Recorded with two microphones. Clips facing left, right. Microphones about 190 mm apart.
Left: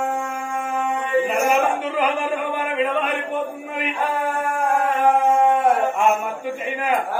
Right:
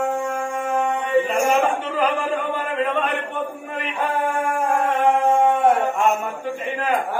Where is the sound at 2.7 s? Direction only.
10° left (ahead or behind).